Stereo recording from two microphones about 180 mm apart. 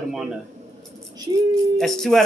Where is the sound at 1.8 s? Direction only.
Centre (ahead or behind).